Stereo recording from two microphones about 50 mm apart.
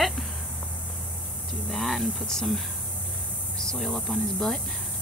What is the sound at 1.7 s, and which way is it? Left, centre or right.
Speech, centre.